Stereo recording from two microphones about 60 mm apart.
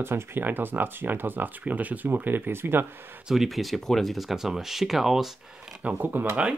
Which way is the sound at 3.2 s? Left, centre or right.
Centre.